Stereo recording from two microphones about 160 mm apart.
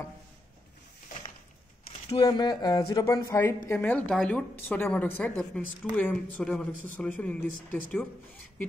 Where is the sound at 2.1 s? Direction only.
25° left (ahead or behind).